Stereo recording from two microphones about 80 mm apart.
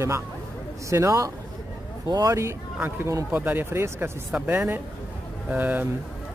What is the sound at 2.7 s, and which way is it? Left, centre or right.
Speech, right.